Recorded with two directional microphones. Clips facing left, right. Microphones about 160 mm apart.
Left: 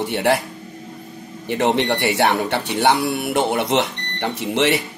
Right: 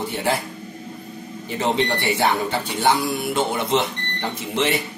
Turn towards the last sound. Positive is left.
turn(degrees=75)  # may be behind; listen again after turning